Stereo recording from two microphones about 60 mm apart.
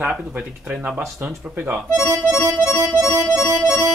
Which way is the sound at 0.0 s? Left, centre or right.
Right.